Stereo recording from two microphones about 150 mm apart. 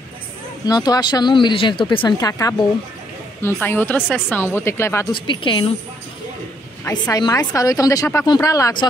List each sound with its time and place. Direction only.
0.7 s speech: 25° left (ahead or behind)
5.1 s a woman's voice: 35° left (ahead or behind)
6.9 s speech: 25° left (ahead or behind)